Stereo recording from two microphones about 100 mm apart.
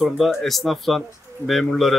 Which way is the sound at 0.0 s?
Centre (ahead or behind).